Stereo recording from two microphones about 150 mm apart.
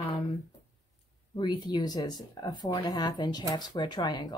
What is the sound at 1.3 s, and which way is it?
Speech, 30° left (ahead or behind).